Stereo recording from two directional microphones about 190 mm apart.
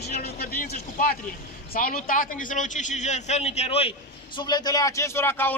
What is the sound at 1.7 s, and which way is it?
A man's voice, 50° left (ahead or behind).